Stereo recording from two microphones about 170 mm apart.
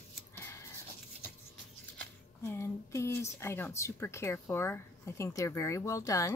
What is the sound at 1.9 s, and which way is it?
Speech, 15° left (ahead or behind).